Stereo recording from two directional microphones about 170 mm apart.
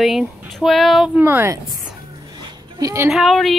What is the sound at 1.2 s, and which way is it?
Speech, 10° right (ahead or behind).